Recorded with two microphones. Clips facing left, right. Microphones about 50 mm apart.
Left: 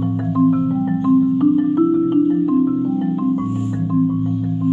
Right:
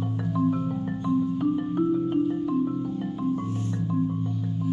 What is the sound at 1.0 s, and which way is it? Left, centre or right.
Marimba, centre.